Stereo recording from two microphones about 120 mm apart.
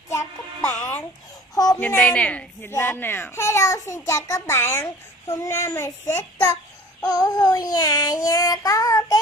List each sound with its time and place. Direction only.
0.1 s music: 25° left (ahead or behind)
1.5 s a sound: 30° left (ahead or behind)
2.0 s a woman's voice: 10° left (ahead or behind)
7.0 s child singing: 35° left (ahead or behind)